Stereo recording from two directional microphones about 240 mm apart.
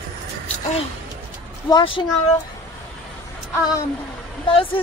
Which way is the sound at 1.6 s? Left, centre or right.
Centre.